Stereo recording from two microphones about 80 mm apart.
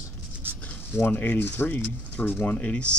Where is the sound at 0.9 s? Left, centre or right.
Left.